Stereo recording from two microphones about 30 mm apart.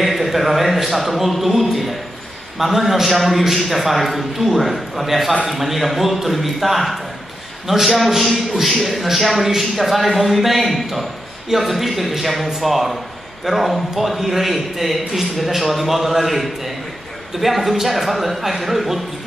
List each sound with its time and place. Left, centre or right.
0.0 s a man's voice: centre